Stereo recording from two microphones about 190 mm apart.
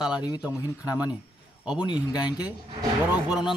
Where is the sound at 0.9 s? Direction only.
5° right (ahead or behind).